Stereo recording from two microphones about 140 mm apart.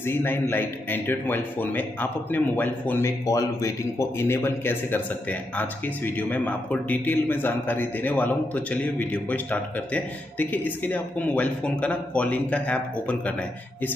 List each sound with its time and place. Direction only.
0.0 s a man's voice: 15° left (ahead or behind)
3.3 s a man's voice: 25° left (ahead or behind)